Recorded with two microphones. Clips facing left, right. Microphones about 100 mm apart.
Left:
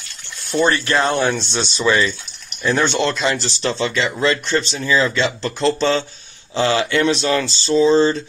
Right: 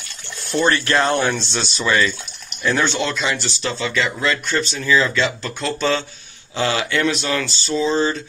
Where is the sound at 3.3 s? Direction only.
35° left (ahead or behind).